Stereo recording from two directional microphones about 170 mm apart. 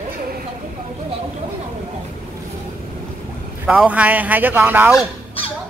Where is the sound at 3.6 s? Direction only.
10° right (ahead or behind).